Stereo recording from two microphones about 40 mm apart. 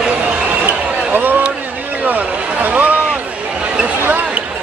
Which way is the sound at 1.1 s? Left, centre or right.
Right.